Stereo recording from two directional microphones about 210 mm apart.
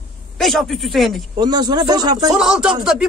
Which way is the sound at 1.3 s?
20° right (ahead or behind).